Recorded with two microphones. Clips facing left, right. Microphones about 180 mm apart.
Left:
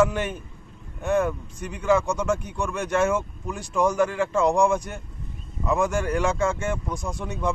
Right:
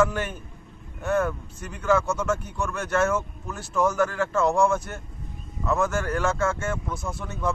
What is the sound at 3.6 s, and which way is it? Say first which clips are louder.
Speech: left 1 dB; 5° right (ahead or behind).